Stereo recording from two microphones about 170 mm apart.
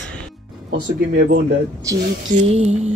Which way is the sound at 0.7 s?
65° right (ahead or behind).